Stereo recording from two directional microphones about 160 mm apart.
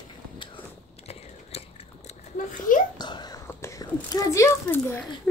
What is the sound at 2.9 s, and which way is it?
Whispering, 25° left (ahead or behind).